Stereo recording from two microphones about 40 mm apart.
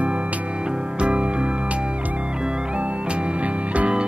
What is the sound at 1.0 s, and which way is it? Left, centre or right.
Music, right.